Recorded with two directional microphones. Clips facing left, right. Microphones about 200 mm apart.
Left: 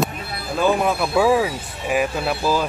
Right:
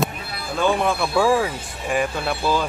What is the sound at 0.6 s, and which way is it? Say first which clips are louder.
Speech: left 1 dB; 5° left (ahead or behind).